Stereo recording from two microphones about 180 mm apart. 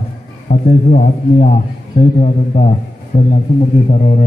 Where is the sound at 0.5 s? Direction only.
45° left (ahead or behind).